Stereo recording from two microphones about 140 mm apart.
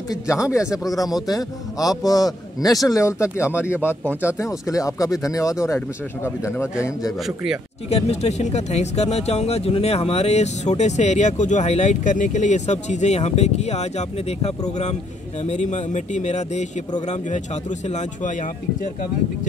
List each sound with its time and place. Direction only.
0.1 s a man's voice: 20° left (ahead or behind)
7.9 s speech: 50° left (ahead or behind)